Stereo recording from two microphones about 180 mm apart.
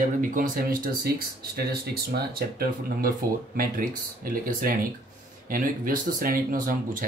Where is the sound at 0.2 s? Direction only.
50° right (ahead or behind).